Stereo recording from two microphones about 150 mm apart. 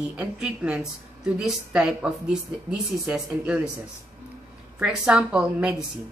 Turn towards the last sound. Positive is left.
turn(degrees=-5)  # may be behind; listen again after turning